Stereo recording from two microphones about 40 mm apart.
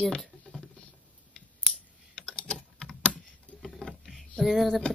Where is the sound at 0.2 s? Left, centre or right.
Centre.